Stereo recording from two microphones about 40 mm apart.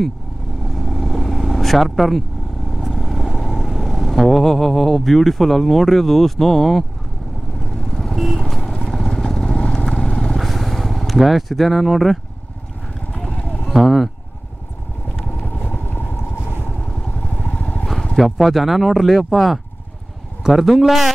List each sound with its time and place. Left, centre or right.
0.7 s vehicle: centre
2.9 s speech: centre
7.7 s vehicle: centre
8.9 s vehicle: centre
10.3 s vehicle: centre
13.1 s a sound: left
13.8 s speech: centre
15.3 s vehicle: left
17.3 s vehicle: left
18.1 s speech: centre